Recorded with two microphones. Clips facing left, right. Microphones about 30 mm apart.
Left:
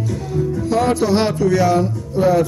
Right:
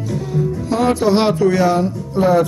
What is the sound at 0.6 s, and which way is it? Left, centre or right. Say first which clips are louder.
Speech: even; centre.